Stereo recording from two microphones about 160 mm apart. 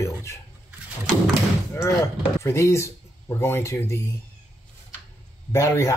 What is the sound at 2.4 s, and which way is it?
Speech, 15° left (ahead or behind).